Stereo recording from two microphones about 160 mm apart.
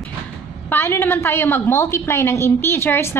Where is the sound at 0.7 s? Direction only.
15° left (ahead or behind).